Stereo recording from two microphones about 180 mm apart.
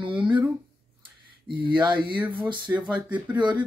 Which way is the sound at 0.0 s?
25° right (ahead or behind).